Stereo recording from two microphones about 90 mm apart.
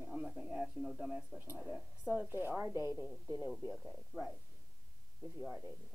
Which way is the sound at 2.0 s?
20° right (ahead or behind).